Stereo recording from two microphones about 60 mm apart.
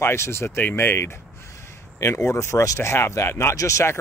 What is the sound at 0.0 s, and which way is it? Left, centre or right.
Speech, left.